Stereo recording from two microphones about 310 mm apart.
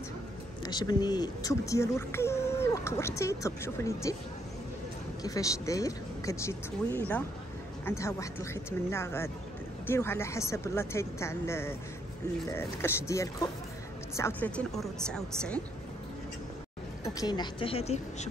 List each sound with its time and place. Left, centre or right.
0.7 s speech: centre
5.2 s a woman's voice: centre
17.0 s speech: centre